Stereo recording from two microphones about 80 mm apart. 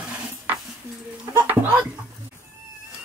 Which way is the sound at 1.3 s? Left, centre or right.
Right.